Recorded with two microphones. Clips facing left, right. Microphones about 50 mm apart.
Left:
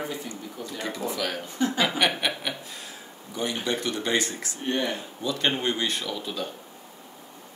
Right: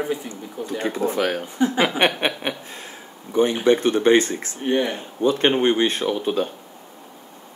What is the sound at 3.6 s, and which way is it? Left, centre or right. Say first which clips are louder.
Speech: right 13 dB; right.